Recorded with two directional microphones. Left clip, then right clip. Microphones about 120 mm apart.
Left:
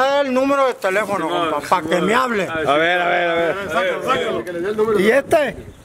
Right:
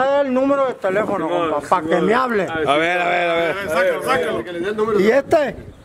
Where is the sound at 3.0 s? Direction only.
30° right (ahead or behind).